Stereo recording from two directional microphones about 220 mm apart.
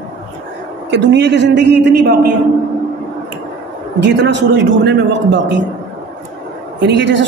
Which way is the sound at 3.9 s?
50° right (ahead or behind).